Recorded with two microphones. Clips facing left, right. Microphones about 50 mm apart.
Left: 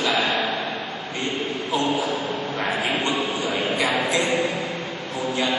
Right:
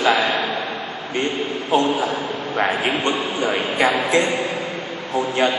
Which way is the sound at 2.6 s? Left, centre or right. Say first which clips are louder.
Right 5 dB; right.